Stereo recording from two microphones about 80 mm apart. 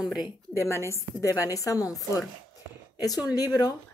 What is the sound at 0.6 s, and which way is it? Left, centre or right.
A woman's voice, left.